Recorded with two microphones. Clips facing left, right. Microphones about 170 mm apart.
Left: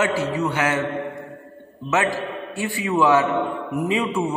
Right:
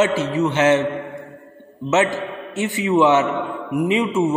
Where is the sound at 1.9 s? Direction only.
20° right (ahead or behind).